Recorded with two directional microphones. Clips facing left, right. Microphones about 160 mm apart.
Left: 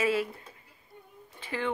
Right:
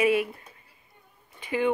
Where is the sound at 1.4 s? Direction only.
15° right (ahead or behind).